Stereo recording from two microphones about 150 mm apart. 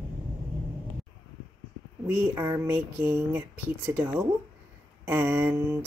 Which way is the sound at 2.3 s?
20° right (ahead or behind).